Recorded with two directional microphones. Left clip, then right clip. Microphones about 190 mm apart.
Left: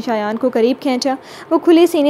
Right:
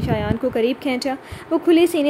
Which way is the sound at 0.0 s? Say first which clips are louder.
Left 5 dB; 20° left (ahead or behind).